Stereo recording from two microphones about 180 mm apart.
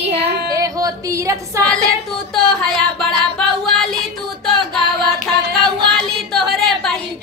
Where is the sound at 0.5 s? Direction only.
20° right (ahead or behind).